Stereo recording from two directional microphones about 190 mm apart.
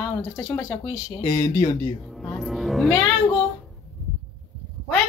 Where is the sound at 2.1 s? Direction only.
Centre (ahead or behind).